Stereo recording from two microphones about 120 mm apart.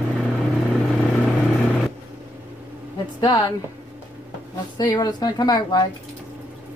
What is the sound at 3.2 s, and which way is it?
Speech, 35° left (ahead or behind).